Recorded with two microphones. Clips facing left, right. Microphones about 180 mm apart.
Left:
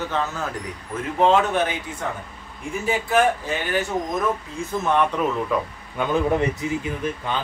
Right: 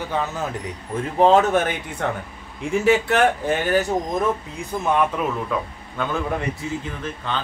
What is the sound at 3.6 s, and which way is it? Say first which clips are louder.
Speech: right 4 dB; 40° right (ahead or behind).